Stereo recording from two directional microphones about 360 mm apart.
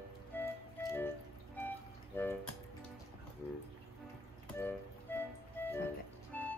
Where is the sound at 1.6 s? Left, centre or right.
Centre.